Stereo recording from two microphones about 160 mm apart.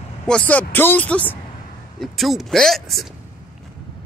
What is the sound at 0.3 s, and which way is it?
Speech, 10° left (ahead or behind).